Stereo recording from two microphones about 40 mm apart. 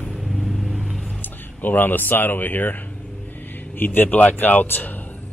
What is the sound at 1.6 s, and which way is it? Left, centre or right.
Speech, left.